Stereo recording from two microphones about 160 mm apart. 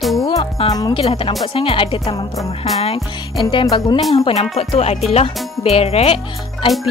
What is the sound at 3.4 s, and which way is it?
Speech, 30° left (ahead or behind).